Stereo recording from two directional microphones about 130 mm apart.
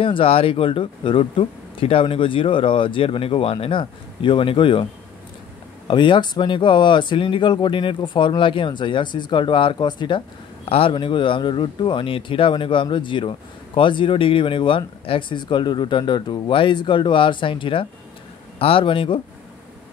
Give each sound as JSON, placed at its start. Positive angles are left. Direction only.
{"t": 0.0, "sound": "speech", "side_deg": 45}
{"t": 5.9, "sound": "speech", "side_deg": 40}